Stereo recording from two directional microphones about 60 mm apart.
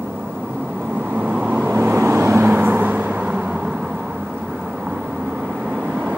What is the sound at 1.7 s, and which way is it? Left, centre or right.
Vehicle, right.